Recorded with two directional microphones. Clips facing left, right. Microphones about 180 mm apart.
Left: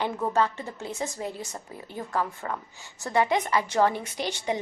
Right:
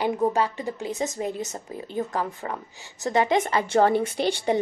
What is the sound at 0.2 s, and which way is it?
Speech, 15° right (ahead or behind).